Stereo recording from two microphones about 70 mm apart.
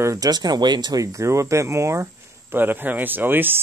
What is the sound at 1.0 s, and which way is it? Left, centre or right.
Speech, right.